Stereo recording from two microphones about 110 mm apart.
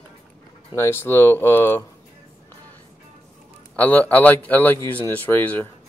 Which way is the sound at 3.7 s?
15° left (ahead or behind).